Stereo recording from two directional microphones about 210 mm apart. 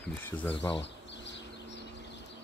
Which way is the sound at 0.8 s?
55° left (ahead or behind).